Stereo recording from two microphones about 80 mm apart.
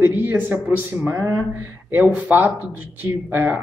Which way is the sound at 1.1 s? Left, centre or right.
Right.